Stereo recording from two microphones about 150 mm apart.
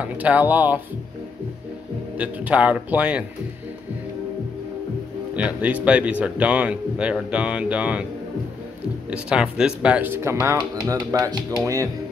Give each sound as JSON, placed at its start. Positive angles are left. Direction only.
{"t": 0.0, "sound": "a man's voice", "side_deg": -10}
{"t": 2.1, "sound": "a man's voice", "side_deg": -10}
{"t": 5.3, "sound": "a man's voice", "side_deg": -10}
{"t": 9.1, "sound": "a man's voice", "side_deg": -5}